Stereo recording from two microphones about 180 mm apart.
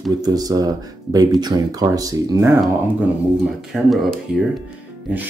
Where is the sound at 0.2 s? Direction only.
20° right (ahead or behind).